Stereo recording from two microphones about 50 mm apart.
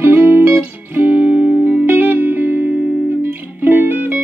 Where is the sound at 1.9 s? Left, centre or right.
Right.